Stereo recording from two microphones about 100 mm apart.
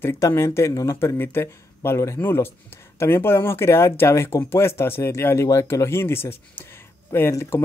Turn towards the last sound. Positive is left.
turn(degrees=30)  # may be behind; listen again after turning